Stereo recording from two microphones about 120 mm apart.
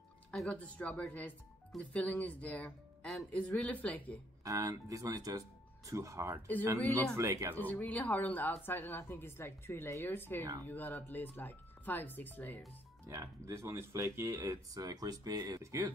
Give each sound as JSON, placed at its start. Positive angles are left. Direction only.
{"t": 0.3, "sound": "speech", "side_deg": 10}
{"t": 4.5, "sound": "speech", "side_deg": -30}
{"t": 7.5, "sound": "speech", "side_deg": 15}
{"t": 13.1, "sound": "speech", "side_deg": -25}